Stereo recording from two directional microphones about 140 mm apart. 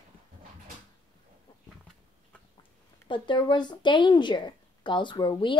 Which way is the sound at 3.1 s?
35° left (ahead or behind).